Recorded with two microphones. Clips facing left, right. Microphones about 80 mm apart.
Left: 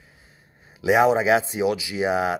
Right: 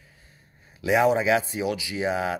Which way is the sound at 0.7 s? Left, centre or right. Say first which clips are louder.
Left 3 dB; left.